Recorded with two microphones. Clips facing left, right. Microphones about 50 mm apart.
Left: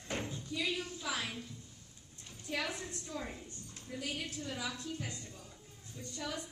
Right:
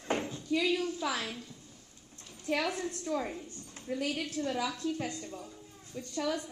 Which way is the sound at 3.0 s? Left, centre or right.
Right.